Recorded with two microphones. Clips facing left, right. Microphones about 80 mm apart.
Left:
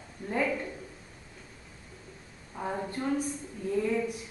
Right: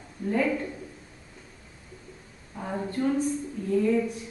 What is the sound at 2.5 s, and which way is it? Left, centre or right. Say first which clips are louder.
Speech: left 2 dB; left.